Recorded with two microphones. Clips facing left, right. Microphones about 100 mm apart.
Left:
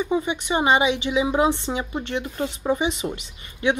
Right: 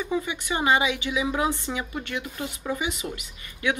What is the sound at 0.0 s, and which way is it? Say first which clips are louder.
Speech: left 5 dB; 25° left (ahead or behind).